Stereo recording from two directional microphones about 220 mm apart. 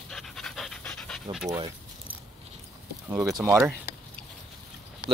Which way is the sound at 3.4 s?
15° right (ahead or behind).